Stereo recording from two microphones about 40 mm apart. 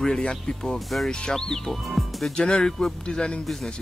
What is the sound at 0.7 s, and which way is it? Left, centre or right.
Speech, centre.